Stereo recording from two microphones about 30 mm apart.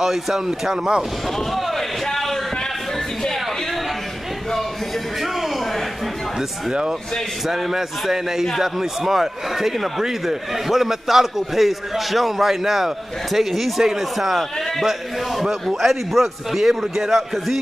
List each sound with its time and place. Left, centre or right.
0.0 s a man's voice: centre
7.4 s a man's voice: centre